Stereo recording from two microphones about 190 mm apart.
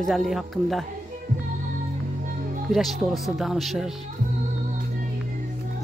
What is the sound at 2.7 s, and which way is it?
Speech, centre (ahead or behind).